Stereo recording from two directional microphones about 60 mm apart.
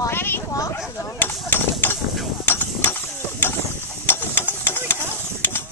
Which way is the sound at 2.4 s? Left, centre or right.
Left.